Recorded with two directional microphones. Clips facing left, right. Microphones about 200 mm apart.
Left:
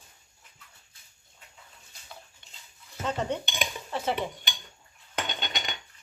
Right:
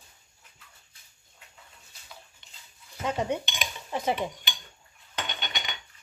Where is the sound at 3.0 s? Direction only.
10° right (ahead or behind).